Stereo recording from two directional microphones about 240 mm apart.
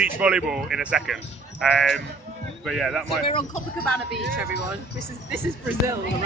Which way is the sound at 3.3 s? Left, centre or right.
Left.